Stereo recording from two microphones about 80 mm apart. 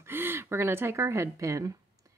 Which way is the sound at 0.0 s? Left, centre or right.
Right.